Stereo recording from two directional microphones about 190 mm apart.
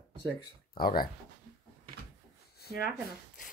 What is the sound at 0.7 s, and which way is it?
Speech, 50° left (ahead or behind).